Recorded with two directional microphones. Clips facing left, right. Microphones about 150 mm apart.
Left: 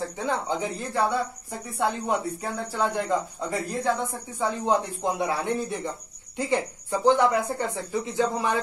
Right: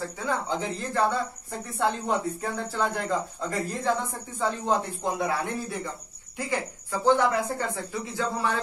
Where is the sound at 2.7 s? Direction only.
15° left (ahead or behind).